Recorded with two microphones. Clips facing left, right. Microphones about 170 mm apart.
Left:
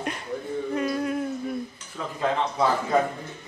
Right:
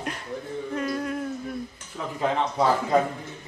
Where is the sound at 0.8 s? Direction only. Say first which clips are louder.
Left 1 dB; 5° left (ahead or behind).